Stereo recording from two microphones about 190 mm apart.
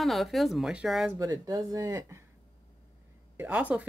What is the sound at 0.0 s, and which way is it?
Speech, centre (ahead or behind).